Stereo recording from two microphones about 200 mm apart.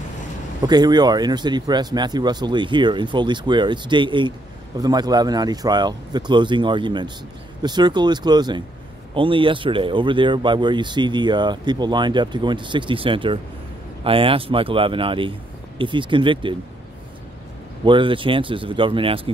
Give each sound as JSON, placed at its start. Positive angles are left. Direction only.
{"t": 0.6, "sound": "speech", "side_deg": -20}
{"t": 17.8, "sound": "speech", "side_deg": -25}